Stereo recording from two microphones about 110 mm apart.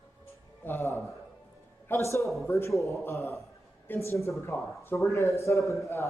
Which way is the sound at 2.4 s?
25° left (ahead or behind).